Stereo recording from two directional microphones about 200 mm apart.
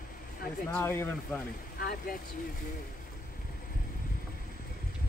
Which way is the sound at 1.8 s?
45° left (ahead or behind).